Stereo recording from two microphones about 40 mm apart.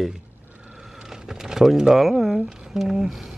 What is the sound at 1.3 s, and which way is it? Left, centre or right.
Speech, centre.